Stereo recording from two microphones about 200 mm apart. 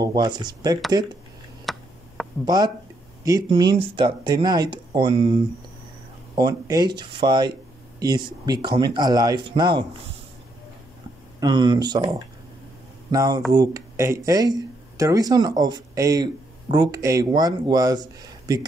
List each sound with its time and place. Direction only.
0.0 s speech: 20° right (ahead or behind)
1.7 s a sound: centre (ahead or behind)
2.4 s speech: 20° right (ahead or behind)
6.3 s speech: 20° right (ahead or behind)
11.3 s speech: 20° right (ahead or behind)